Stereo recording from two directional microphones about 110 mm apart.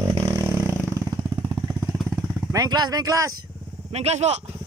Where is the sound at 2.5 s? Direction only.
40° right (ahead or behind).